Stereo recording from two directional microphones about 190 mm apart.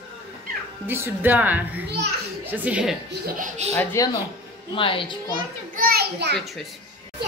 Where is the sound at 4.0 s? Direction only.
15° left (ahead or behind).